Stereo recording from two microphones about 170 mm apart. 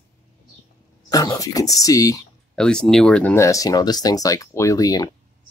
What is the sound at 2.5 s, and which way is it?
Speech, 5° left (ahead or behind).